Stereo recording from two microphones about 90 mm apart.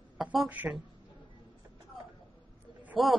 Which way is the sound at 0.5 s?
20° right (ahead or behind).